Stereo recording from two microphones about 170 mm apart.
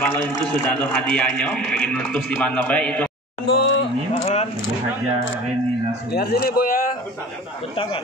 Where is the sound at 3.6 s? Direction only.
90° left.